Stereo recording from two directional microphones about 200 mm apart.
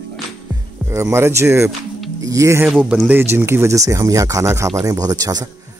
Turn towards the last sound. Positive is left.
turn(degrees=-20)  # may be behind; listen again after turning